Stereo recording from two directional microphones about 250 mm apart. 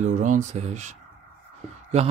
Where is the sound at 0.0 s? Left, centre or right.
Right.